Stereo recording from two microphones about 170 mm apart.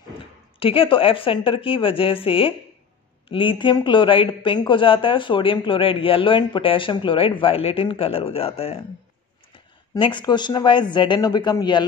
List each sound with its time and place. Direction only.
0.6 s speech: 30° left (ahead or behind)
9.9 s speech: 30° left (ahead or behind)